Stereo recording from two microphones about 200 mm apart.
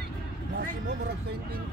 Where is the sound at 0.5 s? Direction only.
55° right (ahead or behind).